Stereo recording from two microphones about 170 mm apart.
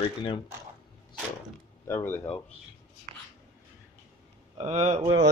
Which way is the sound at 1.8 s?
15° left (ahead or behind).